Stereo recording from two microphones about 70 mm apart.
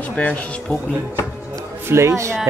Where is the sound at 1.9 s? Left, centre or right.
Right.